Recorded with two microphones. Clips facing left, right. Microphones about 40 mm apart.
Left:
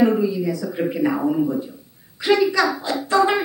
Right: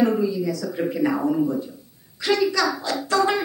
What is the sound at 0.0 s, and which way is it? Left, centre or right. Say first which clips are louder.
Speech: left 3 dB; centre.